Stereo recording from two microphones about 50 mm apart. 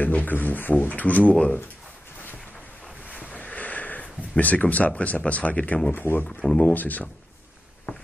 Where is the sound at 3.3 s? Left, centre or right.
Left.